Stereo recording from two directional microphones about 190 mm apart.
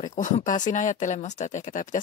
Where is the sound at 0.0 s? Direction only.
40° left (ahead or behind).